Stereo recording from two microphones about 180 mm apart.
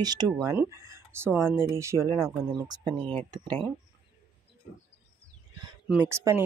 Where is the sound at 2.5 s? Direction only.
25° right (ahead or behind).